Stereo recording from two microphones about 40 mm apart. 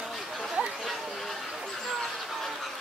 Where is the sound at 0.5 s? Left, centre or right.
Centre.